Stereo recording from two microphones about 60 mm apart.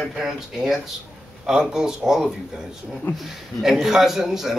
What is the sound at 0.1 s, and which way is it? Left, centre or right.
Speech, centre.